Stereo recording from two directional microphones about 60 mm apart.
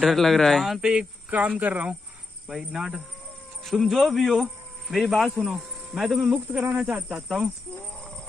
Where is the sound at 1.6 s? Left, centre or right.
Right.